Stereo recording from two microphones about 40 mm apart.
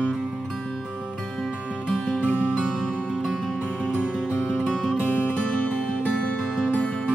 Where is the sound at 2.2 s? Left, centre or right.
Left.